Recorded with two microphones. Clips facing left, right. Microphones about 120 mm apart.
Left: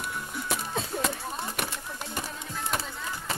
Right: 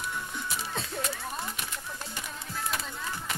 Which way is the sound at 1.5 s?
65° left (ahead or behind).